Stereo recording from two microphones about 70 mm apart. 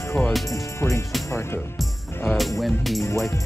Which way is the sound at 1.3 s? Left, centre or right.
Left.